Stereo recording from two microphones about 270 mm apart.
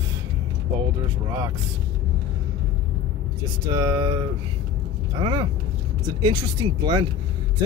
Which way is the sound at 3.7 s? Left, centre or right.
Centre.